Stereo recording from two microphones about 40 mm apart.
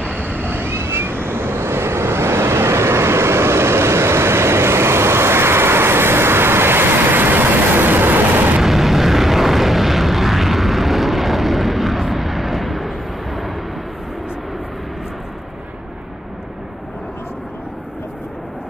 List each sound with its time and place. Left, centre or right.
0.4 s vehicle: right
8.5 s vehicle: centre